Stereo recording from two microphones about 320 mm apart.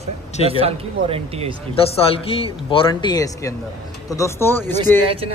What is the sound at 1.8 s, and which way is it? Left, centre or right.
A man's voice, centre.